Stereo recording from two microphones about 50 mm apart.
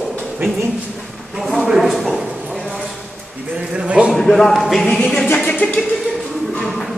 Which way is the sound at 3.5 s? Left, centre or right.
Right.